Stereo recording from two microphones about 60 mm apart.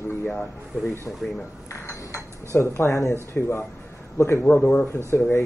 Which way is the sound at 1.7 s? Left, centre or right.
Left.